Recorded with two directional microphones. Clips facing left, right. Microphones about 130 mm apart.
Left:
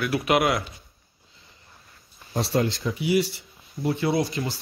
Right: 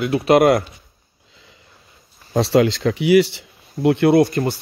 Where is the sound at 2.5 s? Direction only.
80° right.